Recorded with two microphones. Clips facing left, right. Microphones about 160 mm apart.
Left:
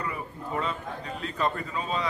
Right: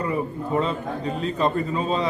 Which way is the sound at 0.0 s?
25° right (ahead or behind).